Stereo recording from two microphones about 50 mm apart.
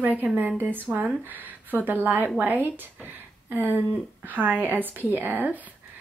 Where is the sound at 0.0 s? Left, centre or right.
Right.